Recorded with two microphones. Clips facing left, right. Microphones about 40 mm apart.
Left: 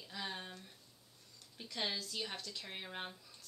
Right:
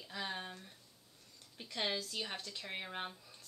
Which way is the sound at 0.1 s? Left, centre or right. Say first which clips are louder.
Right 2 dB; centre.